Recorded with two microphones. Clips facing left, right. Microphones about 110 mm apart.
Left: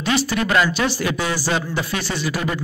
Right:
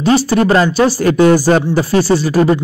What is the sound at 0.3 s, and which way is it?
Speech, 35° right (ahead or behind).